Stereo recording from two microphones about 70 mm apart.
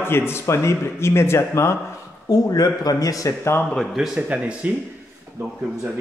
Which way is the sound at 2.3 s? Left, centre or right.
Left.